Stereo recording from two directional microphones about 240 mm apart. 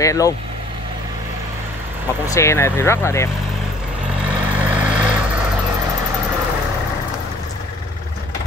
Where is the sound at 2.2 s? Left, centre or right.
Centre.